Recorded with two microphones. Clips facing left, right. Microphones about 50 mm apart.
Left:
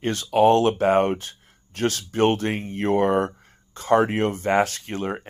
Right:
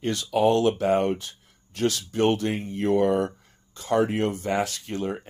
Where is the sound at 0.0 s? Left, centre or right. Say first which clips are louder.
Left 4 dB; left.